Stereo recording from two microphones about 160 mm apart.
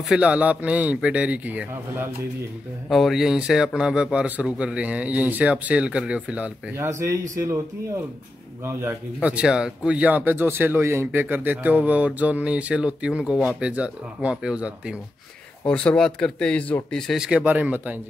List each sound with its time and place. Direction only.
0.1 s a man's voice: 10° right (ahead or behind)
2.9 s a man's voice: centre (ahead or behind)
7.0 s a man's voice: 20° right (ahead or behind)
15.6 s speech: 5° left (ahead or behind); by 17.9 s 10° right (ahead or behind)